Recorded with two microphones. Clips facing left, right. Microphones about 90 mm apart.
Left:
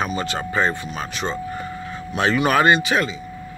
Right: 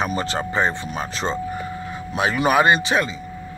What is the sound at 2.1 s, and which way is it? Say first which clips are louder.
A man's voice: even; 10° right (ahead or behind).